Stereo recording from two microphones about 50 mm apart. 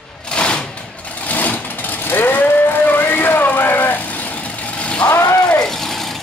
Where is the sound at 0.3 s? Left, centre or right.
Left.